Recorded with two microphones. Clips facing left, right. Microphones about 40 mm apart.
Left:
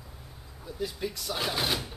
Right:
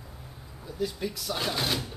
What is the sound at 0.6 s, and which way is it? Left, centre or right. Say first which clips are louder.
Speech: right 2 dB; centre.